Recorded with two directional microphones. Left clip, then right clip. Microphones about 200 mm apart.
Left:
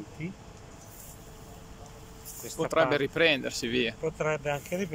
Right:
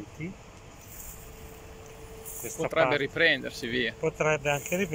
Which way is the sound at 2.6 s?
5° left (ahead or behind).